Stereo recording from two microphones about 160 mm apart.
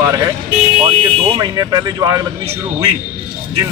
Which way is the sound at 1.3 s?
25° right (ahead or behind).